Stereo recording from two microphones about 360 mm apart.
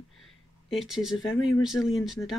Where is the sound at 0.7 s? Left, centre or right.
Centre.